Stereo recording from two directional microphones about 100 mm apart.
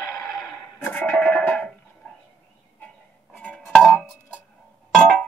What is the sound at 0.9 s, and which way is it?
Music, 15° left (ahead or behind).